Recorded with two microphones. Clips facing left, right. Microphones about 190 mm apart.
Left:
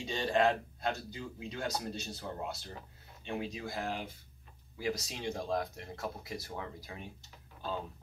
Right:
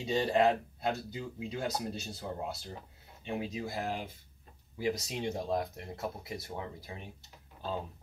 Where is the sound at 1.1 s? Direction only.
25° right (ahead or behind).